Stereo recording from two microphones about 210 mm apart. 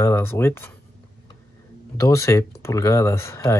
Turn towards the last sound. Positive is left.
turn(degrees=15)  # may be behind; listen again after turning